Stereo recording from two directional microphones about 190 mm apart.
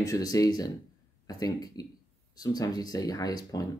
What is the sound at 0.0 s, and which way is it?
Speech, 20° left (ahead or behind).